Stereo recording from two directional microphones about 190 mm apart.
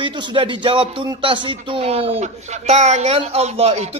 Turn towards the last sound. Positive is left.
turn(degrees=-35)  # may be behind; listen again after turning